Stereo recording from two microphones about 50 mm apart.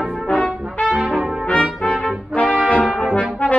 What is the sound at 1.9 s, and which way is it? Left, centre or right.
Trumpet, centre.